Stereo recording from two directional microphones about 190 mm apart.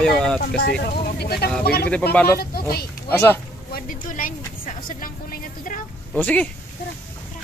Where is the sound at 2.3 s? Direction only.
55° left (ahead or behind).